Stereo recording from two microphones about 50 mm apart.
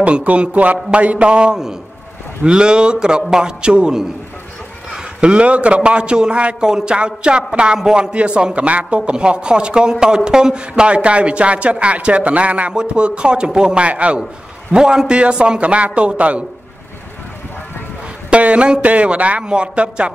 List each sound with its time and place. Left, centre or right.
0.0 s a man's voice: right
14.7 s a man's voice: centre
18.3 s a man's voice: right